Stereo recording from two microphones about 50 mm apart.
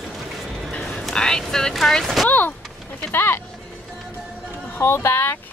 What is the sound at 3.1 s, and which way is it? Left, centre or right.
Vehicle, left.